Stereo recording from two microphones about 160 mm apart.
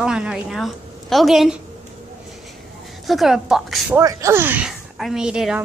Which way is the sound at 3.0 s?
Centre (ahead or behind).